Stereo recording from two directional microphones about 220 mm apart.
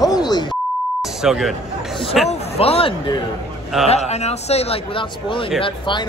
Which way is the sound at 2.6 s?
25° left (ahead or behind).